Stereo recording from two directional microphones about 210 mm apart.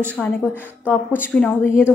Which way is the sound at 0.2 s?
Centre (ahead or behind).